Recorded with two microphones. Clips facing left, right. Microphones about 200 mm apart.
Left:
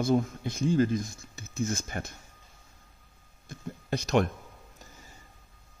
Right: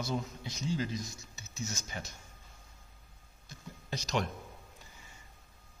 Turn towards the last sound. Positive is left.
turn(degrees=55)  # may be behind; listen again after turning